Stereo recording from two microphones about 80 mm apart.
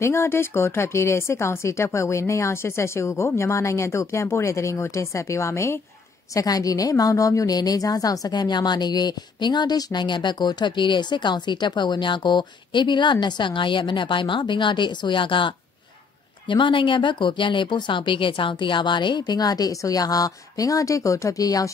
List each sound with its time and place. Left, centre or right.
0.0 s speech: left
6.3 s a woman's voice: left